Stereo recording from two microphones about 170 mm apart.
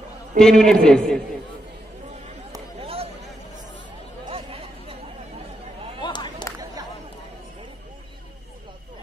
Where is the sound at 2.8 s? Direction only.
35° right (ahead or behind).